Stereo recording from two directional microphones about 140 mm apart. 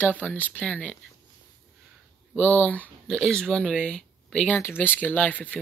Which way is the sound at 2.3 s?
10° left (ahead or behind).